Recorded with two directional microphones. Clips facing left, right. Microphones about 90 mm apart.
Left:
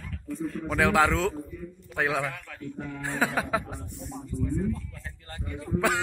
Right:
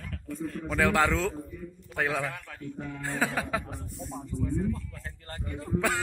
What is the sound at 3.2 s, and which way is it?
Speech, 20° left (ahead or behind).